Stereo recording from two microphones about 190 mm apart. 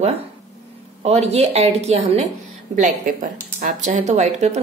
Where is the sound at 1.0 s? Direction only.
35° right (ahead or behind).